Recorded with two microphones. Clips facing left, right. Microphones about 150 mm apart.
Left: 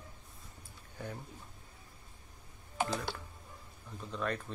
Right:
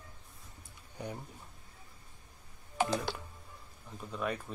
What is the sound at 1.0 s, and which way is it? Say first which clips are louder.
Speech: right 2 dB; 15° right (ahead or behind).